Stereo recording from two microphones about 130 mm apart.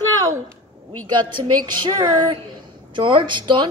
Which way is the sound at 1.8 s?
35° right (ahead or behind).